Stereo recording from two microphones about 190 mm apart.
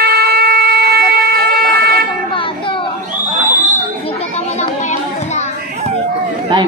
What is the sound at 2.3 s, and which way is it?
Children playing, 25° left (ahead or behind).